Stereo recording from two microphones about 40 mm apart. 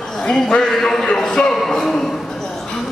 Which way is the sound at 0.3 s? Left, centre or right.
Left.